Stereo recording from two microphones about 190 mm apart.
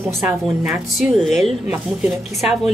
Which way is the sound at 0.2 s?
10° right (ahead or behind).